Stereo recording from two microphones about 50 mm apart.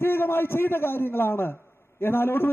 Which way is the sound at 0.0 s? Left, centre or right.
Left.